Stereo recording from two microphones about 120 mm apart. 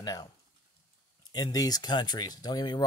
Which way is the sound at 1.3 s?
35° left (ahead or behind).